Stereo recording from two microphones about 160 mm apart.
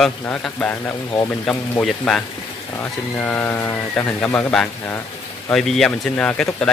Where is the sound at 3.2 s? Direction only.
10° left (ahead or behind).